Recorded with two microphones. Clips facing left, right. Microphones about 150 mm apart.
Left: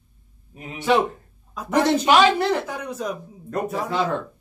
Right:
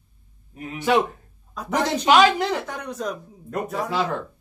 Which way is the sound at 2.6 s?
5° left (ahead or behind).